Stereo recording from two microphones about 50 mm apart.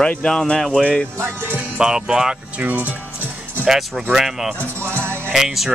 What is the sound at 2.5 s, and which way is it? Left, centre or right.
Speech, right.